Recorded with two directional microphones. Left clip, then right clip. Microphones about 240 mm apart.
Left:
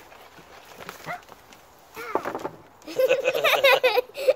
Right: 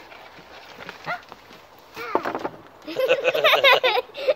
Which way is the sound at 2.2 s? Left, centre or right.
Right.